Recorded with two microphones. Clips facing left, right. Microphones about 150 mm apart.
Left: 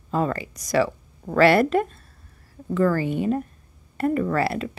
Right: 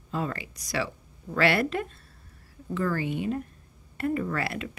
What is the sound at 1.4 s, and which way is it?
A woman's voice, 40° left (ahead or behind).